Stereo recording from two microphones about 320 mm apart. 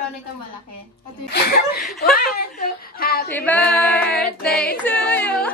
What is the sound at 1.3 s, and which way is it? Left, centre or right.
A woman's voice, left.